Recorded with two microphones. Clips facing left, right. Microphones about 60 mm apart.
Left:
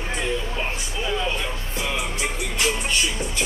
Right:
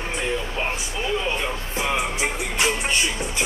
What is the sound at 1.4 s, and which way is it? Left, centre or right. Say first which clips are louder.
Music: right 2 dB; right.